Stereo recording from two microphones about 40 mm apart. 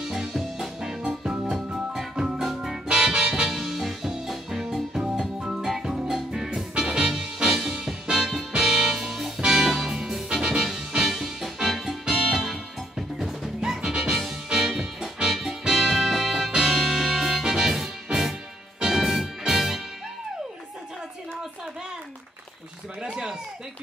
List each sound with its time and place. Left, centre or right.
0.0 s music: centre
2.9 s music: centre
3.4 s music: centre
14.5 s music: centre
23.0 s a sound: centre